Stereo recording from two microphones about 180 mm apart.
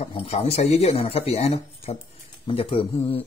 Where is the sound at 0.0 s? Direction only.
35° left (ahead or behind).